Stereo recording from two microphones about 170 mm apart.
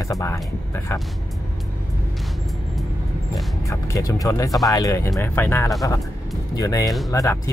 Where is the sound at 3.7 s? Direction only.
20° left (ahead or behind).